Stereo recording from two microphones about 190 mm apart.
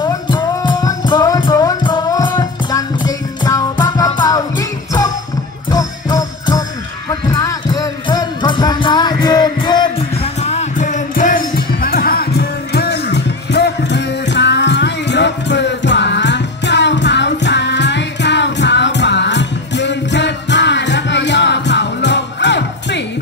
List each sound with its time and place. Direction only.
0.0 s music: 25° left (ahead or behind); by 23.0 s 65° left (ahead or behind)